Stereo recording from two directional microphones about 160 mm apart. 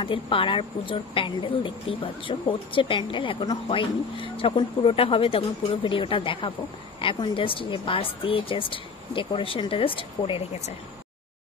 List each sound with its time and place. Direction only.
0.0 s a woman's voice: 35° left (ahead or behind)